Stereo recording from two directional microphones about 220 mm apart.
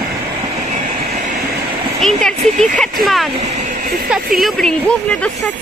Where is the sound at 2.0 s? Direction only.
5° left (ahead or behind).